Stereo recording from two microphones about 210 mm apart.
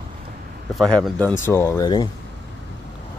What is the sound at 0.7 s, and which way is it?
Speech, centre (ahead or behind).